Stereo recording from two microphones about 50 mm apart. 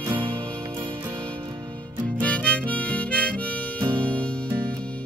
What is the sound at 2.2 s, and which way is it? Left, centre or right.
Harmonica, left.